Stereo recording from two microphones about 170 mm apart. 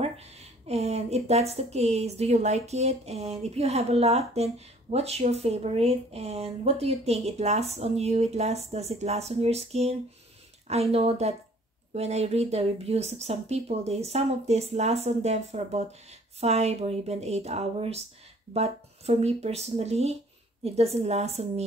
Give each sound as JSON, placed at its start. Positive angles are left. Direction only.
{"t": 0.0, "sound": "speech", "side_deg": -40}